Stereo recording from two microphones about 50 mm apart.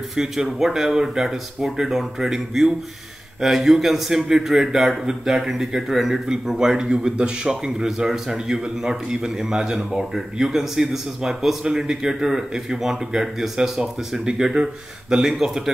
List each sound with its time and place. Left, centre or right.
0.1 s a man's voice: centre